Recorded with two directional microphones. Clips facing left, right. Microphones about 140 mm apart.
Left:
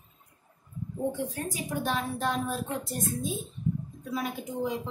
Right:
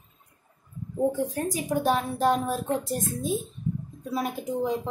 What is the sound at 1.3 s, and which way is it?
Speech, 40° right (ahead or behind).